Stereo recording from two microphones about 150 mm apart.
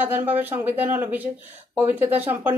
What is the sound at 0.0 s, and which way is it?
A woman's voice, 10° right (ahead or behind).